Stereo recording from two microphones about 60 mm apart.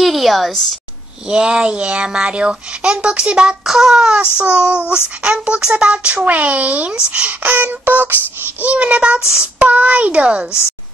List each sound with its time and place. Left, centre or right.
0.0 s a woman's voice: centre
1.3 s speech: centre
4.4 s child singing: centre